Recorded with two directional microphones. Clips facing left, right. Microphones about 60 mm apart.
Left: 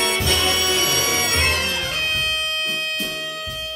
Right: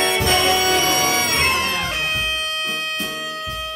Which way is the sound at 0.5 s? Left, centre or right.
Right.